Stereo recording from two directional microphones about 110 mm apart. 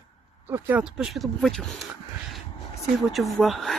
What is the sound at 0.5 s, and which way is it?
Speech, 15° right (ahead or behind).